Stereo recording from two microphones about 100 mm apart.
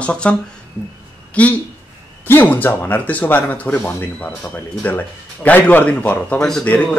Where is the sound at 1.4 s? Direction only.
15° left (ahead or behind).